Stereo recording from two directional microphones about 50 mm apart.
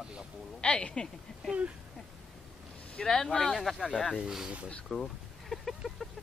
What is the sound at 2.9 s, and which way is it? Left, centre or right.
Speech, centre.